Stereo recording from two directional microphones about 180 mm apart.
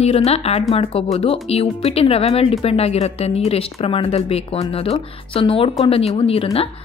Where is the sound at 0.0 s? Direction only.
35° left (ahead or behind).